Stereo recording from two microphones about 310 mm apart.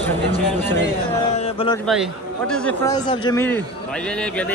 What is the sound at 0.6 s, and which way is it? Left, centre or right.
Speech, centre.